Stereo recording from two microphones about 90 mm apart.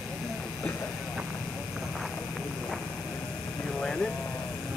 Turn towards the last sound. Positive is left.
turn(degrees=10)  # may be behind; listen again after turning